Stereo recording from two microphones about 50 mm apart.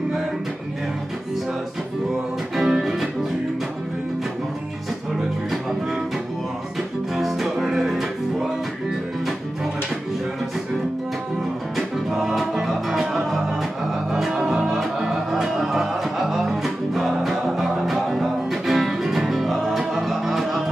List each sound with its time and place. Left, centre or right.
2.5 s music: centre
7.2 s music: centre
12.2 s music: centre